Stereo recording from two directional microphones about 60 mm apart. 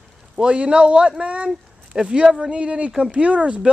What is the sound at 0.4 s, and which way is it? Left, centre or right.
Speech, centre.